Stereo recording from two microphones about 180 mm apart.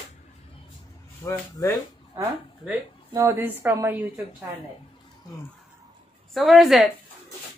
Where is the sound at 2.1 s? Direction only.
10° right (ahead or behind).